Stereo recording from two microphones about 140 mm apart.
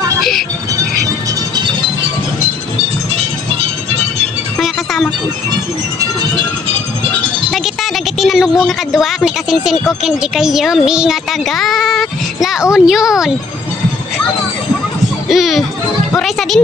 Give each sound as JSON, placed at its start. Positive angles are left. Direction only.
{"t": 0.2, "sound": "music", "side_deg": 0}
{"t": 4.6, "sound": "music", "side_deg": 0}
{"t": 5.5, "sound": "music", "side_deg": -30}
{"t": 7.5, "sound": "speech", "side_deg": 0}
{"t": 15.2, "sound": "speech", "side_deg": 0}